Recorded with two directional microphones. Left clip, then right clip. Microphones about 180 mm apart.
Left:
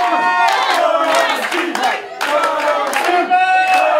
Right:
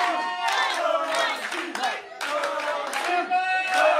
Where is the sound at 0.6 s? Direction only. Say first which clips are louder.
Left 10 dB; 40° right (ahead or behind).